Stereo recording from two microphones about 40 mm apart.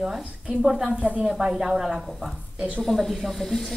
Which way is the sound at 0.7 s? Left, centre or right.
Centre.